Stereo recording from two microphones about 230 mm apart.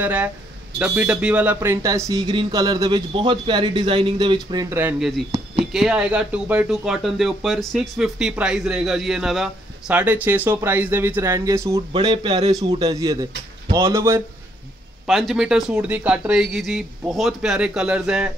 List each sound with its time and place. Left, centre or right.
0.0 s speech: centre
15.0 s speech: centre